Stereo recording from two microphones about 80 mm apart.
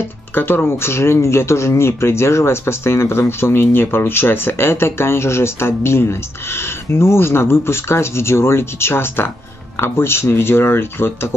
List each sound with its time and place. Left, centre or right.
0.3 s speech: left